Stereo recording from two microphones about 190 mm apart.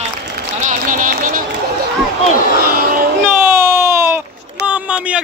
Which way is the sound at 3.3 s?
10° right (ahead or behind).